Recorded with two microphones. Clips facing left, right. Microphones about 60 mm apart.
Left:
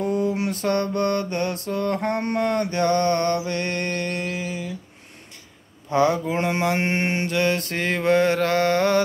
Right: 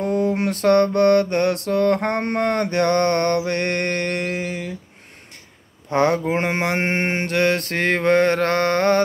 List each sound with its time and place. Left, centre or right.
0.0 s mantra: right
5.9 s mantra: right